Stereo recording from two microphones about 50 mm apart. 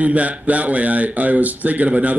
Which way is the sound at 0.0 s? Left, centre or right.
Right.